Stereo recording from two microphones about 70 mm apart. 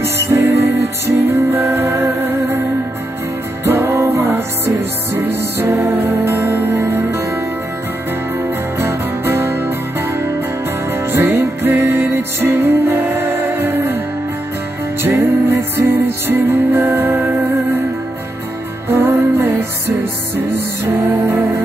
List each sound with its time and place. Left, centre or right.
0.0 s music: right
3.6 s music: right
8.7 s music: right
15.2 s music: right
18.9 s music: right
20.8 s music: right